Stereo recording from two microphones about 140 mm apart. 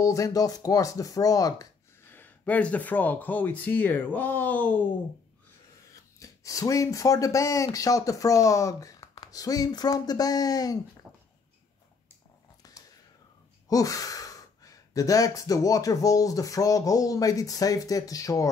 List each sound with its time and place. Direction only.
0.0 s speech: 25° left (ahead or behind)
2.0 s speech: 15° left (ahead or behind)
6.1 s speech: 25° left (ahead or behind)
12.6 s whispering: 25° left (ahead or behind)
13.7 s speech: 25° left (ahead or behind)